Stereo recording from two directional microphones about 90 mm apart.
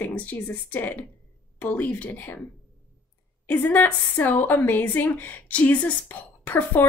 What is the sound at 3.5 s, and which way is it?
A woman's voice, 20° left (ahead or behind).